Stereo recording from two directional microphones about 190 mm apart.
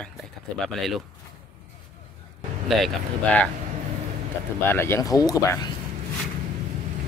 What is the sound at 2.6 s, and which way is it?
Speech, centre (ahead or behind).